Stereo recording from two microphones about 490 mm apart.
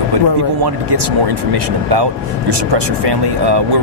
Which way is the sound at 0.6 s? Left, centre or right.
Right.